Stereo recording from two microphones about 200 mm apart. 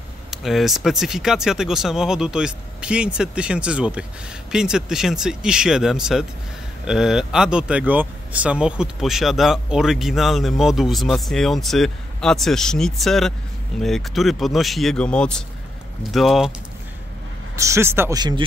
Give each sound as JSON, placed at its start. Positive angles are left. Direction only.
{"t": 0.3, "sound": "speech", "side_deg": 0}
{"t": 17.6, "sound": "speech", "side_deg": -15}